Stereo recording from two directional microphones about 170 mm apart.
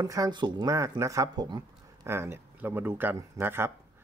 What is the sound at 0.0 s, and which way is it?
Speech, 20° right (ahead or behind).